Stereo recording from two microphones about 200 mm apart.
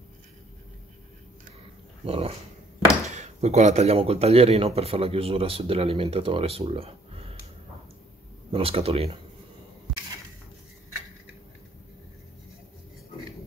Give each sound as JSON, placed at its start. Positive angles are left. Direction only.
{"t": 2.0, "sound": "speech", "side_deg": -30}
{"t": 8.5, "sound": "speech", "side_deg": -25}